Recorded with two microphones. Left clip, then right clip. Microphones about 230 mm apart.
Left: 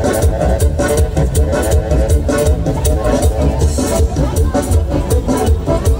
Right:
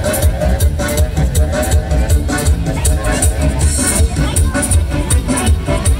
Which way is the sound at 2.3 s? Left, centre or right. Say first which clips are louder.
Left 5 dB; left.